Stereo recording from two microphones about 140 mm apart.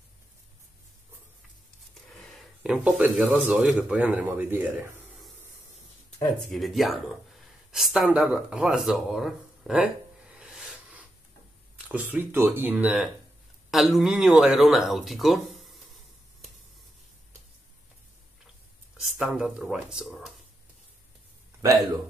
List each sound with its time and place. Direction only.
2.0 s speech: centre (ahead or behind); by 4.8 s 15° right (ahead or behind)
6.5 s speech: centre (ahead or behind)
18.9 s speech: 5° right (ahead or behind)